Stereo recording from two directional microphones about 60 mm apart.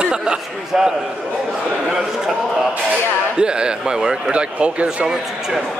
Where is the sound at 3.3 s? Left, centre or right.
Centre.